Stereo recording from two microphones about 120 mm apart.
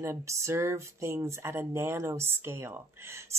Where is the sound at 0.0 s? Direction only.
25° right (ahead or behind).